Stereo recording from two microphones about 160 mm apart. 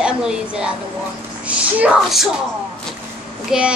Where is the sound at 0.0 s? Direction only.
5° right (ahead or behind).